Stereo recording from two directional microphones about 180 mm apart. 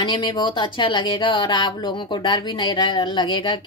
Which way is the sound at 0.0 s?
25° left (ahead or behind).